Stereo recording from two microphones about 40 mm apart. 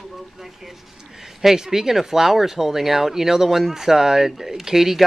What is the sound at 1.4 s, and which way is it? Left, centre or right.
Speech, centre.